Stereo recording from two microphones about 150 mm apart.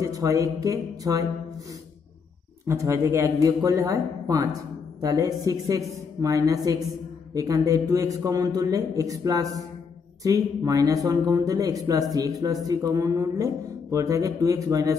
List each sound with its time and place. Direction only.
0.0 s a man's voice: 20° right (ahead or behind)
2.6 s a man's voice: 20° right (ahead or behind)